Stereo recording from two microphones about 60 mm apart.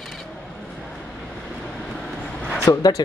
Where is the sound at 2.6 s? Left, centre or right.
Left.